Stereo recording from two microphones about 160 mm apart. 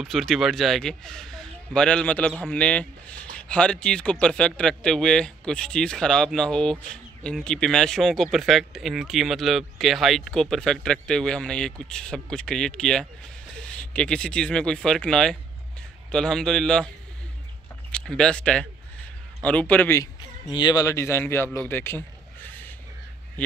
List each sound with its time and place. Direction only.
0.0 s speech: centre (ahead or behind)
17.9 s a man's voice: 5° left (ahead or behind)
20.2 s speech: 30° left (ahead or behind)
21.5 s a sound: 15° left (ahead or behind)